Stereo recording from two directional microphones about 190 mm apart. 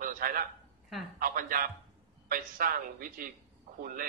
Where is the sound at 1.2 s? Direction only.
50° right (ahead or behind).